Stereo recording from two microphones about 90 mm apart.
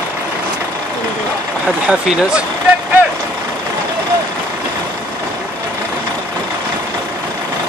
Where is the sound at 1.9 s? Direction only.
10° right (ahead or behind).